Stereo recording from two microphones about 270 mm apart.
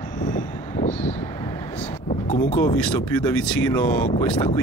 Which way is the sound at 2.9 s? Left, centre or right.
Centre.